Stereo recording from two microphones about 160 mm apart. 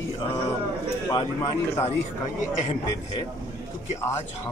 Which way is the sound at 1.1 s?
25° left (ahead or behind).